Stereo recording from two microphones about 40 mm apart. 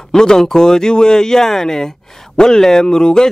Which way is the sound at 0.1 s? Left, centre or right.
Centre.